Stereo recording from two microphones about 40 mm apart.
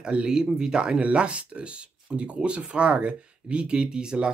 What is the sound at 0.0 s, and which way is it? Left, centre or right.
Speech, right.